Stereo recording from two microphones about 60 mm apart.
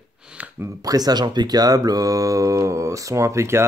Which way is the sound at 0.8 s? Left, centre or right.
Right.